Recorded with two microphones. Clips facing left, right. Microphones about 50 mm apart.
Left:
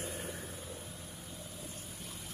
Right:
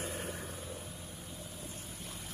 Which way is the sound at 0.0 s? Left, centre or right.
Right.